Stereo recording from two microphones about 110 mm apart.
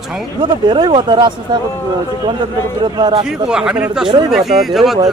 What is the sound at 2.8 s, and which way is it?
Speech, 45° right (ahead or behind).